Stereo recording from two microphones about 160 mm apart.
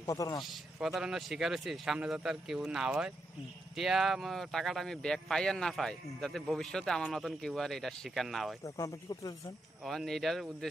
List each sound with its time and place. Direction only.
0.0 s a man's voice: 20° left (ahead or behind)
0.4 s speech: centre (ahead or behind)
8.6 s speech: 20° left (ahead or behind)
9.8 s speech: centre (ahead or behind)